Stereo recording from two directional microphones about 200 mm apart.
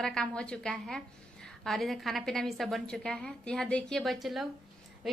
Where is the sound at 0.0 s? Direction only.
5° left (ahead or behind).